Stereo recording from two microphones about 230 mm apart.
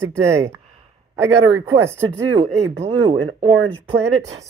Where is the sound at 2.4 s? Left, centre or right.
Right.